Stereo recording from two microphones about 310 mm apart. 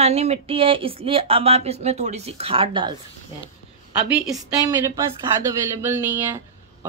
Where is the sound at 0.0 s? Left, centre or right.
Centre.